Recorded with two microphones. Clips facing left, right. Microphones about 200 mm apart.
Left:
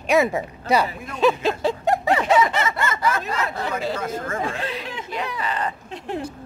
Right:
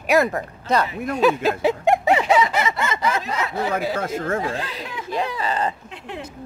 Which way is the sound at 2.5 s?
15° right (ahead or behind).